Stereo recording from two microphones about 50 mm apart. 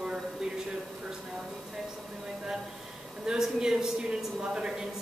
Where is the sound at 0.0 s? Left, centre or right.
Centre.